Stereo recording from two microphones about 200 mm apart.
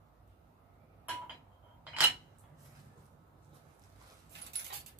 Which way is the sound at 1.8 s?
10° right (ahead or behind).